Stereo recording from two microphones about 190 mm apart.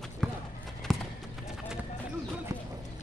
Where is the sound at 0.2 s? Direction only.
5° left (ahead or behind).